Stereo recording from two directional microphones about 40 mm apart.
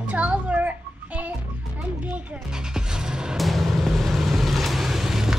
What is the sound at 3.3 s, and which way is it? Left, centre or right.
Vehicle, centre.